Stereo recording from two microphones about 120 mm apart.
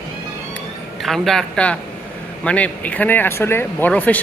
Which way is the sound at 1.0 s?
Centre (ahead or behind).